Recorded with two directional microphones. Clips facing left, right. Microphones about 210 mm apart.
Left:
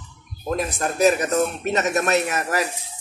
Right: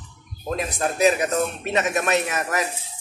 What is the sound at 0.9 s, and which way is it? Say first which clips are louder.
A man's voice: left 2 dB; 45° left (ahead or behind).